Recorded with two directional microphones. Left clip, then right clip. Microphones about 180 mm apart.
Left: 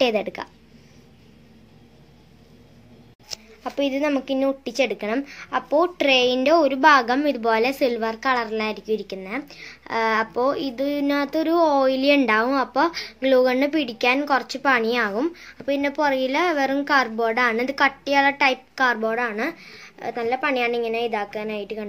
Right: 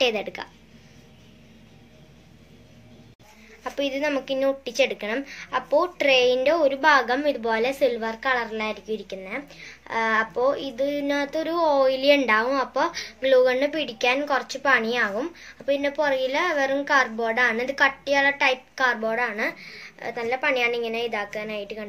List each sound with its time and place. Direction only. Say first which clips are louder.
0.0 s a woman's voice: left 2 dB; 50° left (ahead or behind)
3.7 s speech: left 2 dB; 55° left (ahead or behind)